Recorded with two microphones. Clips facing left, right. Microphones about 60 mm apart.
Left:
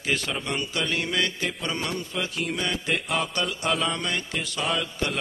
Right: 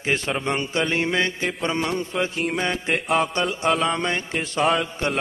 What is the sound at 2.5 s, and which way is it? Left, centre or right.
Speech, right.